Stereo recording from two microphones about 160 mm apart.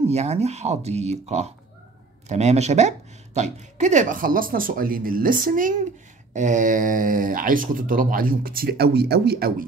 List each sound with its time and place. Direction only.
0.0 s speech: 40° right (ahead or behind); by 9.7 s 75° right (ahead or behind)